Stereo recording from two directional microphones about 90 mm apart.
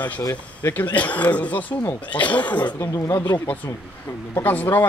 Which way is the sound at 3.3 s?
20° left (ahead or behind).